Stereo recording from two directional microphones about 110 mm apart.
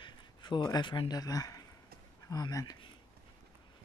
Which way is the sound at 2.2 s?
35° left (ahead or behind).